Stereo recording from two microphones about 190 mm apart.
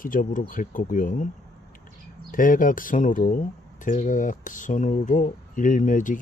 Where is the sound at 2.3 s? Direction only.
45° left (ahead or behind).